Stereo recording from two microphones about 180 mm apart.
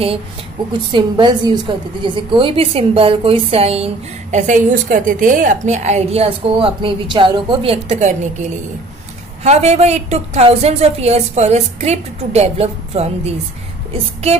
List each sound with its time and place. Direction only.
0.9 s a woman's voice: 25° right (ahead or behind)